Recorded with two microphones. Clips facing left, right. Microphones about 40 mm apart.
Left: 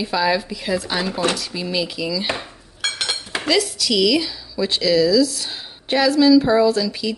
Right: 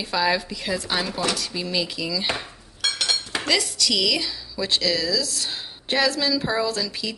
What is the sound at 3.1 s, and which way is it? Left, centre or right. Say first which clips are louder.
Dishes: even; centre.